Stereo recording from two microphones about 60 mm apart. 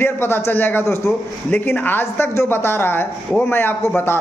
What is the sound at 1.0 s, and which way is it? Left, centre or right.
Speech, left.